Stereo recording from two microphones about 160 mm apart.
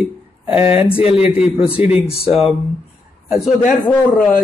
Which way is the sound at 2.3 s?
5° right (ahead or behind).